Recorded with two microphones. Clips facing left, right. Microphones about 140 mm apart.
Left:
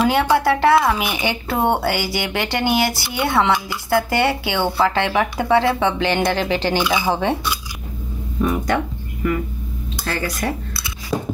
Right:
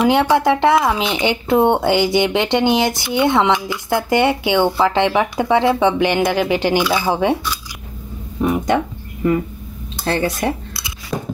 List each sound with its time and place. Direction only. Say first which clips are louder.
0.0 s speech: right 2 dB; 15° right (ahead or behind)
8.4 s speech: right 3 dB; 20° right (ahead or behind)